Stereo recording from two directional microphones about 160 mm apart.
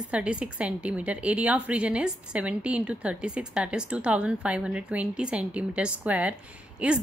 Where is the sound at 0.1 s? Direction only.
5° right (ahead or behind).